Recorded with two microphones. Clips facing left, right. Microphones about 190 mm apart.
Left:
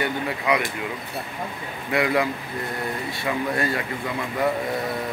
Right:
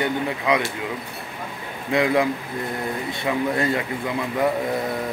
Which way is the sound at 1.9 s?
20° right (ahead or behind).